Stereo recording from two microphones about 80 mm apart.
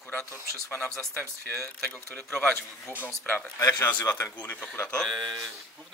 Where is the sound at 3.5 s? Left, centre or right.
Left.